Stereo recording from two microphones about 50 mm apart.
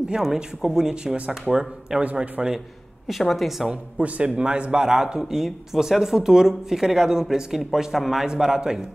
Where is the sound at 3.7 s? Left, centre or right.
Right.